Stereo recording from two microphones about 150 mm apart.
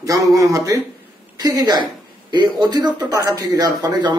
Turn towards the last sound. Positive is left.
turn(degrees=-25)  # may be behind; listen again after turning